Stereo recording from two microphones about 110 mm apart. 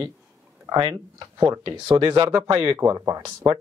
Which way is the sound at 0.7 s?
40° right (ahead or behind).